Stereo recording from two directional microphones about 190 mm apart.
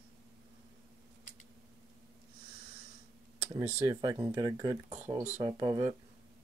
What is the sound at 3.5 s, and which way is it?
Speech, 15° right (ahead or behind).